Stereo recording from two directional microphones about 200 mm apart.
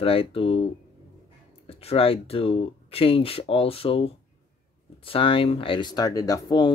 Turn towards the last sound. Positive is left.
turn(degrees=20)  # may be behind; listen again after turning